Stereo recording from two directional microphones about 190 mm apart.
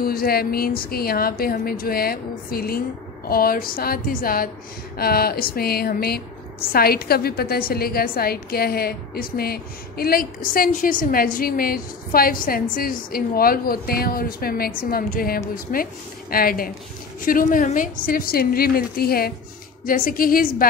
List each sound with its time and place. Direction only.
0.0 s a woman's voice: 50° left (ahead or behind)